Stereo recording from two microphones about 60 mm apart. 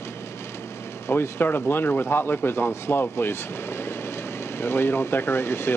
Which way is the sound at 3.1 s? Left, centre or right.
Left.